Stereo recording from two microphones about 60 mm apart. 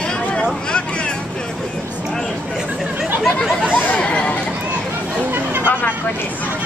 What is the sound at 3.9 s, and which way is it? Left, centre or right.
Speech, centre.